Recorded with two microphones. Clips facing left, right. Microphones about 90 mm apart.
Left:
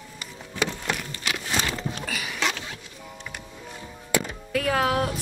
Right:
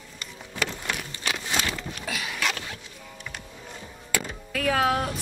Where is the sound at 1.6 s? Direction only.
35° left (ahead or behind).